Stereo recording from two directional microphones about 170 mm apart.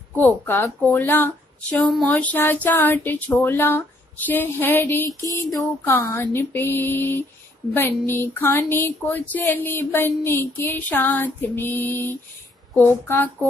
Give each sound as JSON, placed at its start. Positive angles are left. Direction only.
{"t": 0.1, "sound": "speech", "side_deg": 10}
{"t": 5.0, "sound": "a sound", "side_deg": -20}
{"t": 5.5, "sound": "speech", "side_deg": 15}
{"t": 13.1, "sound": "speech", "side_deg": 10}